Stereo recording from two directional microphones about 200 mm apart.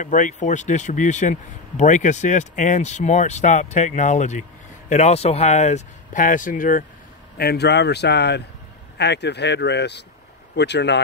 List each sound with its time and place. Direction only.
0.0 s speech: 40° left (ahead or behind)
7.3 s speech: 55° left (ahead or behind)